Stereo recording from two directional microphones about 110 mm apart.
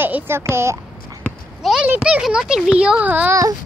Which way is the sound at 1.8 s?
10° right (ahead or behind).